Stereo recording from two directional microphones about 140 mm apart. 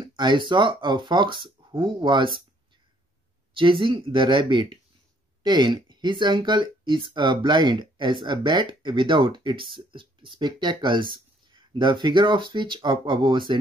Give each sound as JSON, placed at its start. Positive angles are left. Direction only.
{"t": 0.0, "sound": "speech", "side_deg": -30}
{"t": 3.5, "sound": "speech", "side_deg": -35}